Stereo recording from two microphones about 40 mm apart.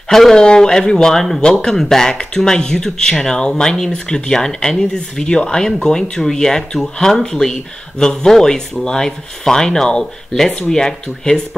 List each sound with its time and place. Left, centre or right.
0.1 s speech: centre
1.8 s speech: centre